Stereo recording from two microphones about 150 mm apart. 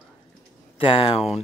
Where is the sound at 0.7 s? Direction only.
35° left (ahead or behind).